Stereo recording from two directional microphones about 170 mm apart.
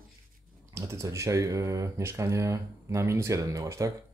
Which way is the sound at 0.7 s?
15° right (ahead or behind).